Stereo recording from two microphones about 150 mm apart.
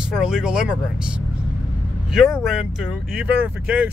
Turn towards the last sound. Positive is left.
turn(degrees=-10)  # may be behind; listen again after turning